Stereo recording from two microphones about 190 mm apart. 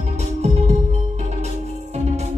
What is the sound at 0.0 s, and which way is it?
Music, 35° right (ahead or behind).